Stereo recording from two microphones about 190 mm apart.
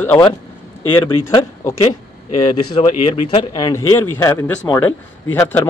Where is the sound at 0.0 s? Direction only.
10° left (ahead or behind).